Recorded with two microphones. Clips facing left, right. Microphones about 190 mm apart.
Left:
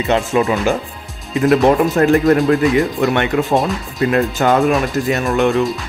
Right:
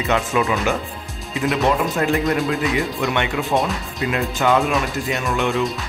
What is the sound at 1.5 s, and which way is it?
Speech, 50° left (ahead or behind).